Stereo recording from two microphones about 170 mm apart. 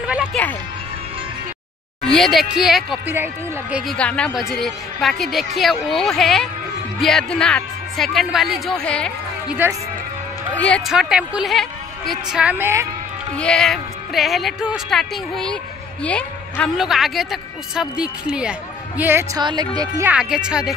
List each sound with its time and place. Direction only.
0.0 s music: 5° right (ahead or behind)
2.0 s speech: centre (ahead or behind)
9.5 s a woman's voice: 10° right (ahead or behind)
10.6 s a woman's voice: centre (ahead or behind)
13.4 s speech: 5° left (ahead or behind)
19.3 s speech: 25° right (ahead or behind)
20.1 s speech: 5° right (ahead or behind)